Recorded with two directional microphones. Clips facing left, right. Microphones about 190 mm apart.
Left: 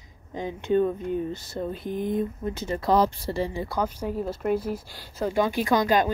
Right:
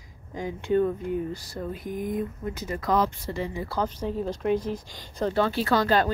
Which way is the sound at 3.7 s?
10° left (ahead or behind).